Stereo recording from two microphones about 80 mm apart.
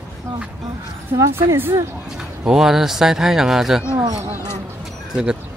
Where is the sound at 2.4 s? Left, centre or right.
Centre.